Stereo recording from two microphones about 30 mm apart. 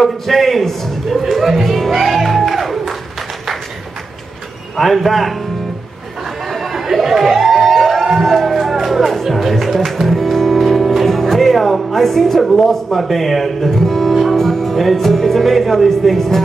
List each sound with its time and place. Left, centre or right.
0.0 s a man's voice: centre
1.2 s a man's voice: centre
1.9 s music: centre
4.9 s a man's voice: centre
6.4 s chatter: centre
7.6 s music: centre
8.4 s music: centre
11.1 s speech: centre